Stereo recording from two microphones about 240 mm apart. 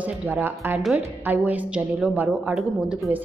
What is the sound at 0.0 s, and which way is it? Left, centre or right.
A woman's voice, centre.